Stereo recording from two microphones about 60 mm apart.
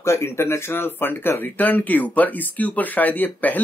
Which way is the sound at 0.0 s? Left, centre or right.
Left.